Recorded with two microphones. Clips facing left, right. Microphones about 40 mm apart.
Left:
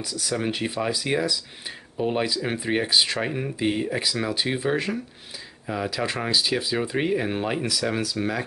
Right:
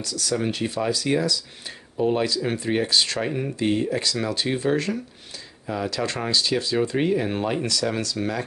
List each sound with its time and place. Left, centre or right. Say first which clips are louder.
0.0 s speech: right 2 dB; centre